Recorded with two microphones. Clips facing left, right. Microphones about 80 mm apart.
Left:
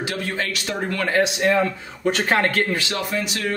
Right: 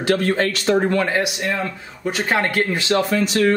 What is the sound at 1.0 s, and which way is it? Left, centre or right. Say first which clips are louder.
Speech: left 2 dB; centre.